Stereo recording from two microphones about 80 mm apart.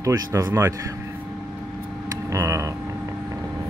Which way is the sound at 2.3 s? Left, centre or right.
Right.